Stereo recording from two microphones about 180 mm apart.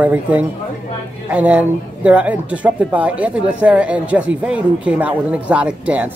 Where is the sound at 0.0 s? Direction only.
10° right (ahead or behind).